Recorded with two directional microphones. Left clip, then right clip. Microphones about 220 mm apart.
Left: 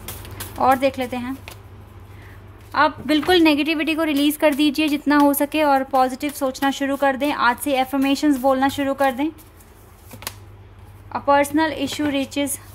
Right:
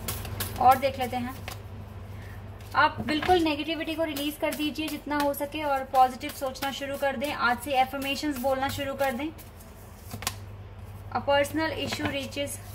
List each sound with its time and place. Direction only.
0.8 s a woman's voice: 50° left (ahead or behind)
2.7 s a woman's voice: 50° left (ahead or behind)
11.1 s a woman's voice: 45° left (ahead or behind)